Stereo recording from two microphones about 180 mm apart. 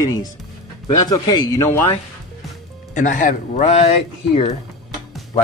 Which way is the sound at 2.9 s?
45° left (ahead or behind).